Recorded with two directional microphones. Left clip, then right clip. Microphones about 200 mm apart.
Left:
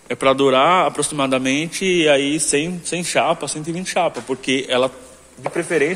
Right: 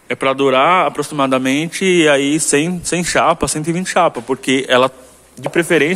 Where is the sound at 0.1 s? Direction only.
5° right (ahead or behind); by 4.9 s 20° right (ahead or behind).